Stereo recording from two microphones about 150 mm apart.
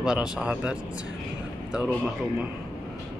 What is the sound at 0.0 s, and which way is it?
Speech, 5° right (ahead or behind).